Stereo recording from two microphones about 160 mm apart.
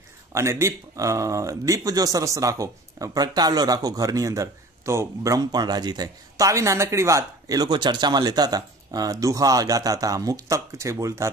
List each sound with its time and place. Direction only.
0.3 s speech: 15° right (ahead or behind)